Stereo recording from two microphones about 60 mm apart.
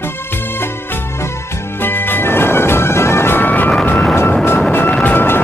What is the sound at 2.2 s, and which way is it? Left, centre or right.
Music, left.